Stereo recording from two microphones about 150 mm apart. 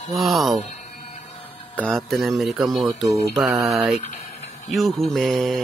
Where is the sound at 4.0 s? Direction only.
50° left (ahead or behind).